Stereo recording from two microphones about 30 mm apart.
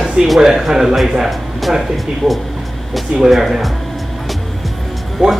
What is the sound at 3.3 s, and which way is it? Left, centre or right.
Speech, centre.